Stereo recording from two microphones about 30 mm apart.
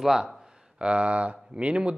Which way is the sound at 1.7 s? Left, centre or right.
Right.